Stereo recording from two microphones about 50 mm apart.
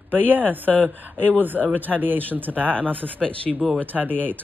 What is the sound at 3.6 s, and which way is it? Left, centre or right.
Speech, left.